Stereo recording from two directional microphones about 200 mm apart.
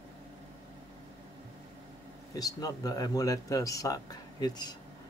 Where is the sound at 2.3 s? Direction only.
20° left (ahead or behind).